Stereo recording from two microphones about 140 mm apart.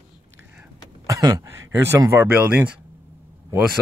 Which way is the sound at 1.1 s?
25° right (ahead or behind).